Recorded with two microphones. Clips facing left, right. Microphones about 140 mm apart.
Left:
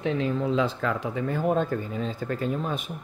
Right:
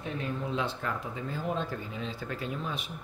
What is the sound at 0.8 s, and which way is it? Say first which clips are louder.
Speech: left 8 dB; 75° left (ahead or behind).